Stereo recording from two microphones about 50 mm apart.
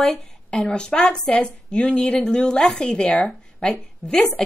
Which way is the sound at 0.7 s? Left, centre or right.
Left.